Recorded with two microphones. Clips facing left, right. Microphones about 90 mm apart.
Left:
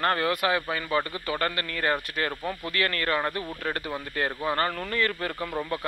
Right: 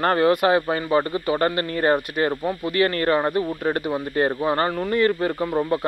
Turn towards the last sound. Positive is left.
turn(degrees=-25)  # may be behind; listen again after turning